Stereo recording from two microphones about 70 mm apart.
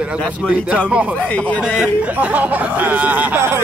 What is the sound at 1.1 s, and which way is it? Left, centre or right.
Speech, centre.